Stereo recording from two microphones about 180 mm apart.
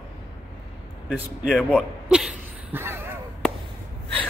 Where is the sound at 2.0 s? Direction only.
5° right (ahead or behind).